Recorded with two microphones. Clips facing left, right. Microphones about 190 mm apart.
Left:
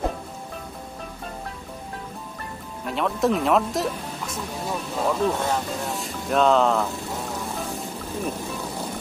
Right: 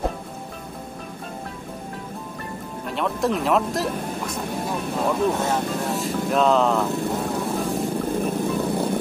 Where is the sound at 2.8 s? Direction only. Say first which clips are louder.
Left 1 dB; centre (ahead or behind).